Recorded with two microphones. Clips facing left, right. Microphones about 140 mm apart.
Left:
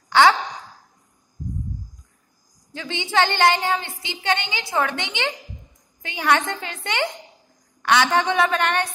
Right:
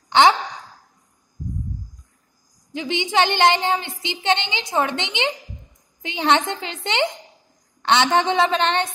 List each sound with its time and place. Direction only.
0.1 s speech: 20° right (ahead or behind)
2.7 s a woman's voice: 15° right (ahead or behind)